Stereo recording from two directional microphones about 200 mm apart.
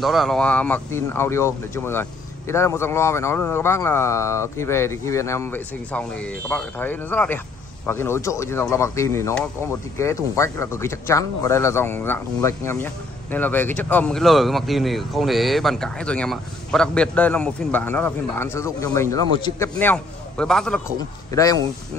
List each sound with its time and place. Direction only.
0.0 s a man's voice: centre (ahead or behind)
21.3 s speech: 15° left (ahead or behind)